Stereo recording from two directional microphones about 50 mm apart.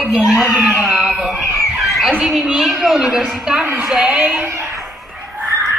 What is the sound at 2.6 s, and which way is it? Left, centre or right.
A woman's voice, centre.